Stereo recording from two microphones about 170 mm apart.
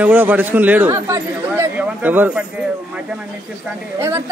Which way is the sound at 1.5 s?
10° right (ahead or behind).